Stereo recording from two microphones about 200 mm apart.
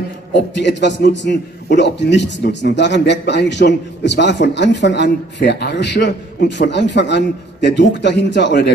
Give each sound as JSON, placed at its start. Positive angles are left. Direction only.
{"t": 0.6, "sound": "a man's voice", "side_deg": 60}